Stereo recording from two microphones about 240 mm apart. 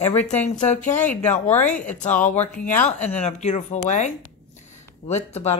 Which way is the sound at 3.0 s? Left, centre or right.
Left.